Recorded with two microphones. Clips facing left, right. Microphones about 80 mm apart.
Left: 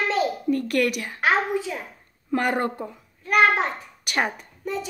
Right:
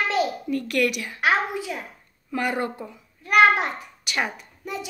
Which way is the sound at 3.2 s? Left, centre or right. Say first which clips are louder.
Right 2 dB; centre.